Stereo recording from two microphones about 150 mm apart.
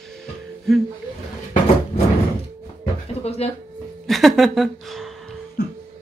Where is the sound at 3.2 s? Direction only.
40° left (ahead or behind).